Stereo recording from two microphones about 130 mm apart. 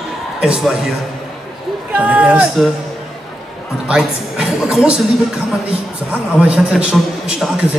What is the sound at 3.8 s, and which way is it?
A woman's voice, 5° right (ahead or behind).